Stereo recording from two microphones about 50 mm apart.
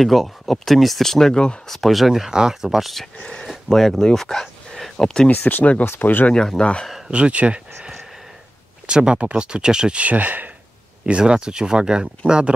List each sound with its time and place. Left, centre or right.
0.0 s speech: centre
1.7 s speech: centre
5.3 s speech: left
6.3 s speech: centre
7.1 s speech: right
10.0 s speech: right
11.1 s speech: right